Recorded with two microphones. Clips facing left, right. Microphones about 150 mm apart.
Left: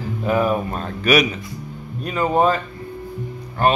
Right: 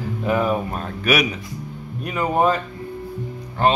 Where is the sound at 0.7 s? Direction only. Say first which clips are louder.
Left 3 dB; 5° right (ahead or behind).